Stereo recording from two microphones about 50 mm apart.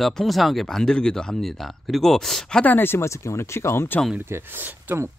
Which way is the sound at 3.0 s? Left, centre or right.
Left.